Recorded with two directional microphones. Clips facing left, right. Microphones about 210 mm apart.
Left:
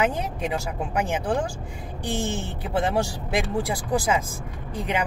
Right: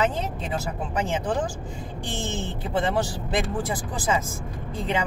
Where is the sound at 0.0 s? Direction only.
15° left (ahead or behind).